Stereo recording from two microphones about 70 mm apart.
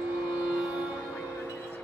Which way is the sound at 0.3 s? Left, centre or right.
Centre.